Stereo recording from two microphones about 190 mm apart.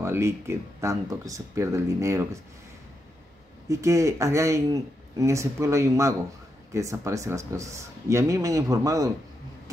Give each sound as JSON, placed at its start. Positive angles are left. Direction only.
{"t": 0.0, "sound": "speech", "side_deg": -15}
{"t": 3.6, "sound": "speech", "side_deg": -15}